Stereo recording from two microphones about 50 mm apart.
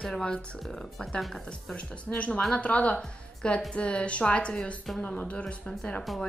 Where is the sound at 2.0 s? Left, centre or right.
Left.